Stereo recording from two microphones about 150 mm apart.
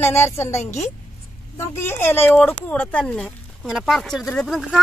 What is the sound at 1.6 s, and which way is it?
Speech, 15° left (ahead or behind).